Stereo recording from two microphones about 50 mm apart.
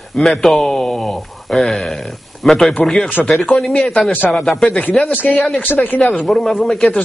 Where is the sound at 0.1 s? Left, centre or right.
Centre.